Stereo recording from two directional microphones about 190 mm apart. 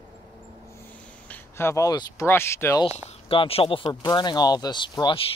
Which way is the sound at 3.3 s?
30° left (ahead or behind).